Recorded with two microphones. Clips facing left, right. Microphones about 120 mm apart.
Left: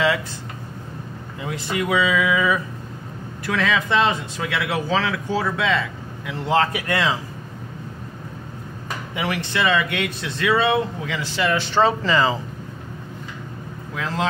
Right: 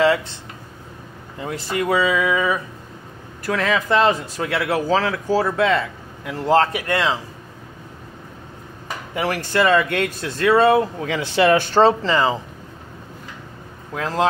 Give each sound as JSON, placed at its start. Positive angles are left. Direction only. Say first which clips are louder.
{"t": 1.4, "sound": "speech", "louder": "right 2 dB", "side_deg": -35}
{"t": 6.9, "sound": "speech", "louder": "right 1 dB", "side_deg": -20}
{"t": 9.1, "sound": "speech", "louder": "right 4 dB", "side_deg": -40}
{"t": 11.8, "sound": "speech", "louder": "even", "side_deg": -25}
{"t": 13.9, "sound": "speech", "louder": "right 4 dB", "side_deg": -45}